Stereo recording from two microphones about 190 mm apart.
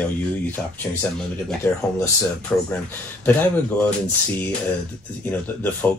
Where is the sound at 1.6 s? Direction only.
15° left (ahead or behind).